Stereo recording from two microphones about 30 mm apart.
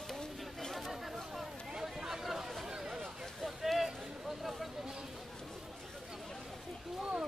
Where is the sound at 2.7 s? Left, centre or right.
Centre.